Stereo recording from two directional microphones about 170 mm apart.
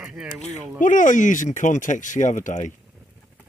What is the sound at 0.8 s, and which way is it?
Speech, 50° left (ahead or behind).